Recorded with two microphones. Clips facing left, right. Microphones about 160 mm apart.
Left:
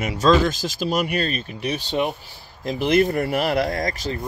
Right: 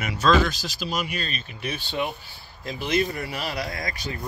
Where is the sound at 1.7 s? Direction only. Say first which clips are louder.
Left 6 dB; 90° left.